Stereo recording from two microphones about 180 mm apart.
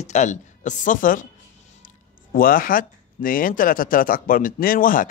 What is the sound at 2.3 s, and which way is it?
Speech, 50° left (ahead or behind).